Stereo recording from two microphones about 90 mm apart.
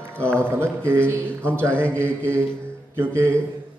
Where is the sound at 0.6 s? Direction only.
25° right (ahead or behind).